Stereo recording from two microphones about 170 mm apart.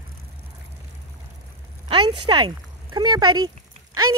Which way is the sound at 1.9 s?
30° right (ahead or behind).